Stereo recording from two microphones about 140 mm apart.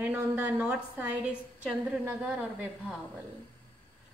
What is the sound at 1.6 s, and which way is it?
Speech, 5° right (ahead or behind).